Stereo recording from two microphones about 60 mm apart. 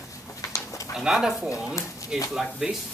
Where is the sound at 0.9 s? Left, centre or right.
Centre.